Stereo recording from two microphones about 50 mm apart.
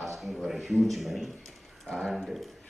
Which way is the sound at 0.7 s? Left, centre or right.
Centre.